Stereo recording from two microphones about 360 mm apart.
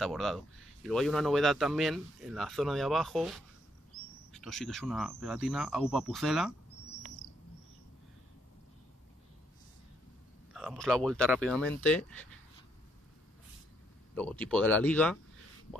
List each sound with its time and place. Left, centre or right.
0.0 s speech: centre
10.5 s speech: centre
14.1 s speech: centre